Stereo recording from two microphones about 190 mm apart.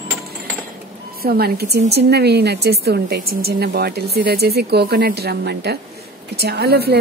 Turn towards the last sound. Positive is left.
turn(degrees=-55)  # may be behind; listen again after turning